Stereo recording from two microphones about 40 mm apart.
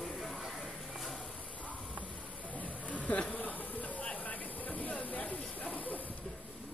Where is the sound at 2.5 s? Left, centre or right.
Left.